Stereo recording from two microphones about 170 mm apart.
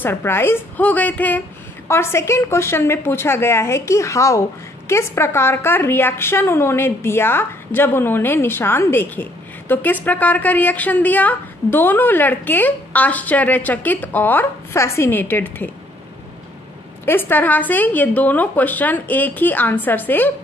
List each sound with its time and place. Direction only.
0.0 s a woman's voice: 15° left (ahead or behind)
17.0 s a woman's voice: 10° left (ahead or behind)